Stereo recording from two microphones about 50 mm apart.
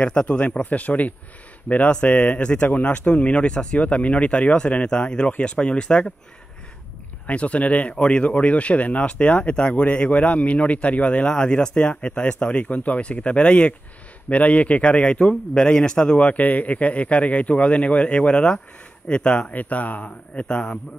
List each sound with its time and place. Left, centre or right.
0.0 s speech: left
2.3 s speech: left
2.7 s speech: left
7.2 s speech: left
12.6 s speech: left